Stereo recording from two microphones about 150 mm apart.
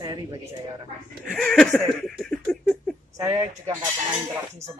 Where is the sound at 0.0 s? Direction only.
25° right (ahead or behind).